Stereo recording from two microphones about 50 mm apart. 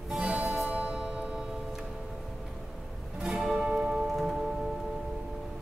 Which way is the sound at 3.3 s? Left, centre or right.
Centre.